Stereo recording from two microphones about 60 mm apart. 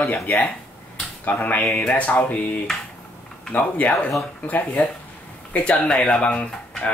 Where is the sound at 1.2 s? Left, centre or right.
Left.